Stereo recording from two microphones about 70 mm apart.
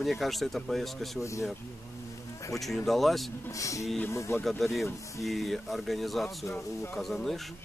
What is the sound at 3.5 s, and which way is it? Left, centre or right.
Speech, left.